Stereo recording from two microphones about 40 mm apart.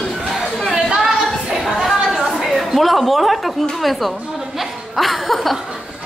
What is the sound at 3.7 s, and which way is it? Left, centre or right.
Speech, centre.